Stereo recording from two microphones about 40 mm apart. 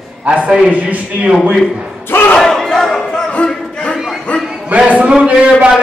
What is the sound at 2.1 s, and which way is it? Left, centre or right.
Crowd, left.